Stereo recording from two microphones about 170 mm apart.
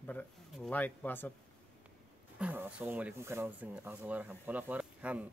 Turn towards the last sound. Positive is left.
turn(degrees=-10)  # may be behind; listen again after turning